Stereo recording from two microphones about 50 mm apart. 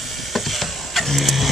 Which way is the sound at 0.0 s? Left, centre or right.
Centre.